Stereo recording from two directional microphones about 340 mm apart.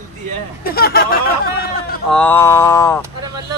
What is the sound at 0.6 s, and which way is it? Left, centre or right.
Speech, left.